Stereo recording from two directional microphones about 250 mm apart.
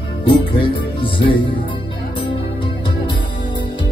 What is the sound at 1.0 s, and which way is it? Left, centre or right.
Music, centre.